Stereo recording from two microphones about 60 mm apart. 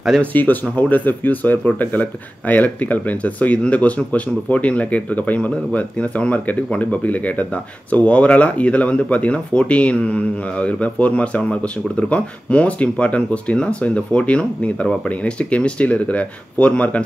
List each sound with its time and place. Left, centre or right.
0.2 s speech: left